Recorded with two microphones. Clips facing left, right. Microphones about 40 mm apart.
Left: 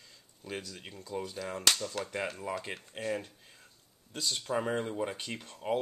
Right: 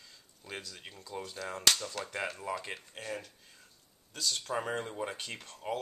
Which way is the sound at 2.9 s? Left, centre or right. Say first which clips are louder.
Left 10 dB; centre.